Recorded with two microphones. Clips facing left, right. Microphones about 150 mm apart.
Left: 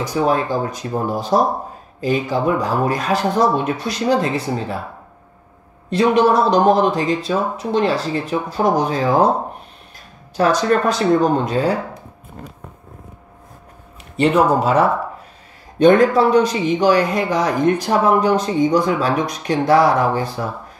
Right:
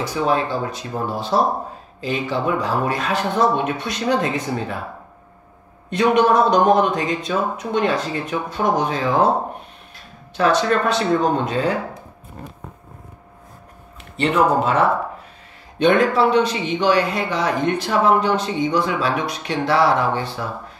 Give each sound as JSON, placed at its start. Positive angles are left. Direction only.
{"t": 0.3, "sound": "a man's voice", "side_deg": 45}
{"t": 5.9, "sound": "a man's voice", "side_deg": 35}
{"t": 10.3, "sound": "a man's voice", "side_deg": 40}
{"t": 14.1, "sound": "a man's voice", "side_deg": 40}